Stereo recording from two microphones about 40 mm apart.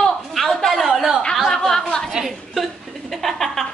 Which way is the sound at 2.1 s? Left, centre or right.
Centre.